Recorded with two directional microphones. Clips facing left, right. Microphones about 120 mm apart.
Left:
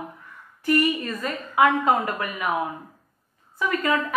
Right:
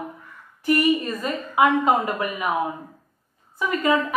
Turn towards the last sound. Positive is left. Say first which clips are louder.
# right 3 dB
turn(degrees=-20)  # may be behind; listen again after turning